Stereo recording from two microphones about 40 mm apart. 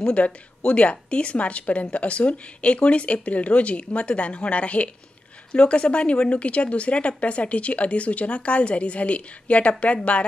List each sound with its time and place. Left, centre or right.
0.2 s a woman's voice: left